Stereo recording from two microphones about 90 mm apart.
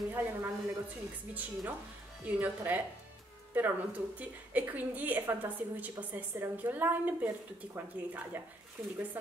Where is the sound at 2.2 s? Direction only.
20° right (ahead or behind).